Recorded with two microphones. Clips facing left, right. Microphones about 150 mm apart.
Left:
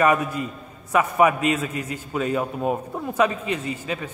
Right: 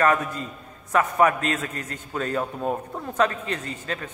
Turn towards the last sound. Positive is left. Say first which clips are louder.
# left 3 dB
turn(degrees=10)  # may be behind; listen again after turning